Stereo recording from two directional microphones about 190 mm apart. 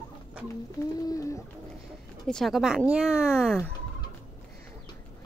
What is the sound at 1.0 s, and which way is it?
Bird, 15° left (ahead or behind).